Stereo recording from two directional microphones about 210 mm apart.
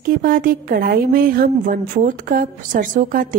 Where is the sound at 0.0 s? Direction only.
40° right (ahead or behind).